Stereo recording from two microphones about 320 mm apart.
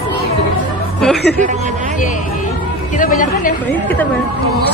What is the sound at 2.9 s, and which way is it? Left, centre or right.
Speech, left.